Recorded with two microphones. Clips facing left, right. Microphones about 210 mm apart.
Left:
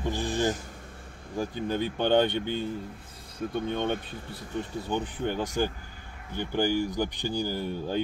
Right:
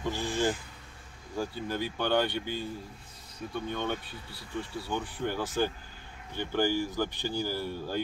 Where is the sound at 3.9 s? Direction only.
50° left (ahead or behind).